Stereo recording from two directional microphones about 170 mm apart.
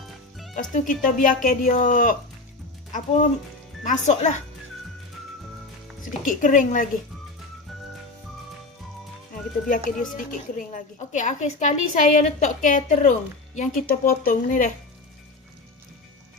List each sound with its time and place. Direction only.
0.6 s a woman's voice: 50° left (ahead or behind)
3.8 s a woman's voice: 45° left (ahead or behind)
6.0 s a woman's voice: 50° left (ahead or behind)
9.7 s a woman's voice: 50° left (ahead or behind)
13.7 s speech: 60° left (ahead or behind)